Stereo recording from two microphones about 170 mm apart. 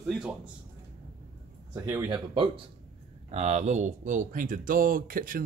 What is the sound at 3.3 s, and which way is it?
A man's voice, 40° right (ahead or behind).